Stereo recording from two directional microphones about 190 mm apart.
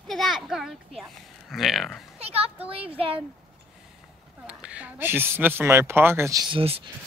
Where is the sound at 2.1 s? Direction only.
30° right (ahead or behind).